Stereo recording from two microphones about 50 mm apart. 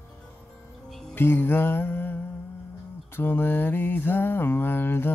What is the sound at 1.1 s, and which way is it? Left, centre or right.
Music, left.